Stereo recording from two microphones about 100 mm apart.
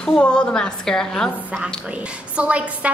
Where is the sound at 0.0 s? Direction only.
10° left (ahead or behind).